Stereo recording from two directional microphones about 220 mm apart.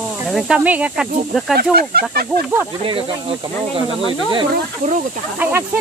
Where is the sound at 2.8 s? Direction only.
25° right (ahead or behind).